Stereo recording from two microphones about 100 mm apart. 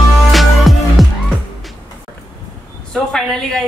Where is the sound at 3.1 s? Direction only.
5° left (ahead or behind).